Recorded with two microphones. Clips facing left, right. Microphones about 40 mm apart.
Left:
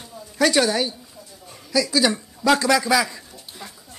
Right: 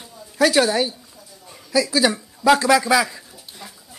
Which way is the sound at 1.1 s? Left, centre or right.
Centre.